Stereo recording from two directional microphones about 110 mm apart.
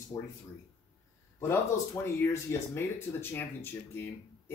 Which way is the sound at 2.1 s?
25° left (ahead or behind).